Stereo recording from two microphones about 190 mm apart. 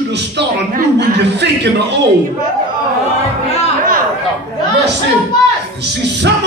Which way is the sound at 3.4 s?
30° left (ahead or behind).